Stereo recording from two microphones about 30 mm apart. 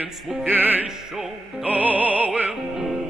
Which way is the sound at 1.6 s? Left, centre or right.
Right.